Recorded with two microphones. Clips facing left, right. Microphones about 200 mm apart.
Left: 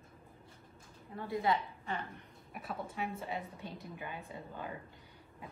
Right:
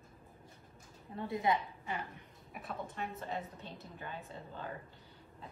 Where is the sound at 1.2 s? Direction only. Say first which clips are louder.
Even; 20° right (ahead or behind).